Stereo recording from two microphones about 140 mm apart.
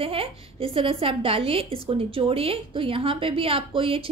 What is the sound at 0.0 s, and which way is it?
A woman's voice, 40° right (ahead or behind).